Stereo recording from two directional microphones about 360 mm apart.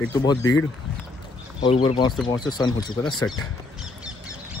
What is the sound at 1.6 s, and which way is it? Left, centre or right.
Speech, centre.